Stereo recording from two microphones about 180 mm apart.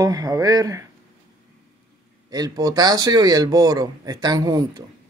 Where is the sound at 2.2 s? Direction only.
20° right (ahead or behind).